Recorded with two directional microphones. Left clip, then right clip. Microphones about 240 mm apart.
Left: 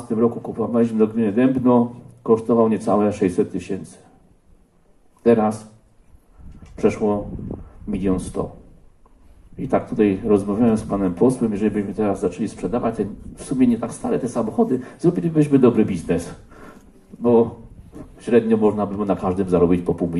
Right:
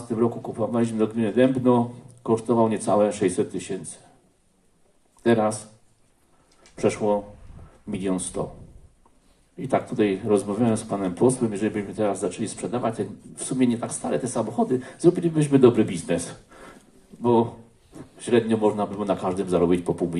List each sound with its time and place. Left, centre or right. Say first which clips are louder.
0.1 s speech: left 4 dB; right
5.2 s speech: left 4 dB; right
6.7 s speech: left 3 dB; right
9.6 s speech: left 3 dB; right